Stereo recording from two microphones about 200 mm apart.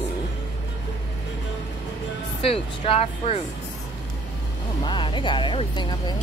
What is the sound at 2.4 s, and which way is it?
Speech, 30° left (ahead or behind).